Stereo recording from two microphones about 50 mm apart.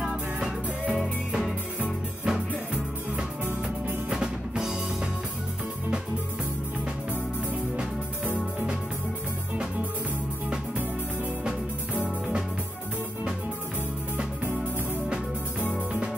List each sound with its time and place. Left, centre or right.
0.0 s music: centre
1.8 s music: centre
11.9 s music: right